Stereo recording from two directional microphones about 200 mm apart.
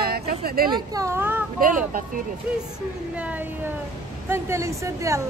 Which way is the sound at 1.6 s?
45° right (ahead or behind).